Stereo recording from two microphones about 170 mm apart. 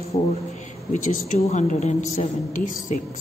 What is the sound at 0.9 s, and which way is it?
A woman's voice, 50° left (ahead or behind).